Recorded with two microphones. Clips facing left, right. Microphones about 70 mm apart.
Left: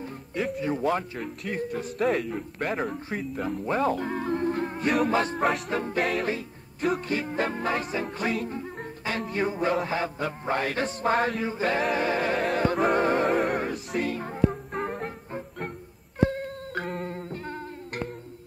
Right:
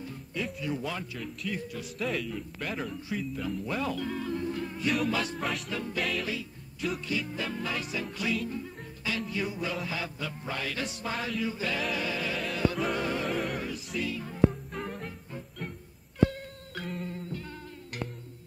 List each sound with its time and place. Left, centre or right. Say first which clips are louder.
0.6 s a man's voice: left 8 dB; left
5.4 s music: left 7 dB; left
9.2 s mantra: left 9 dB; left
16.3 s music: left 9 dB; left